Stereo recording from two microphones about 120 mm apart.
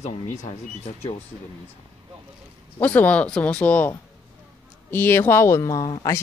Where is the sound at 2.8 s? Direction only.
15° left (ahead or behind).